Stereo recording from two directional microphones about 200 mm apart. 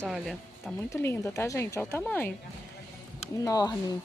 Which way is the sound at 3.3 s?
15° left (ahead or behind).